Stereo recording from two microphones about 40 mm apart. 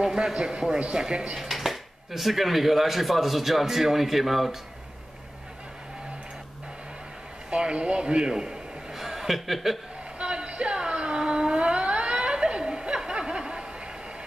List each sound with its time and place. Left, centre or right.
0.0 s a man's voice: centre
1.3 s speech: centre
7.5 s a man's voice: right
8.9 s chuckle: centre
10.1 s a sound: right